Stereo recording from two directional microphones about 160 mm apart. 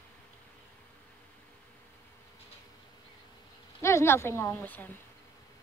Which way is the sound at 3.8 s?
15° left (ahead or behind).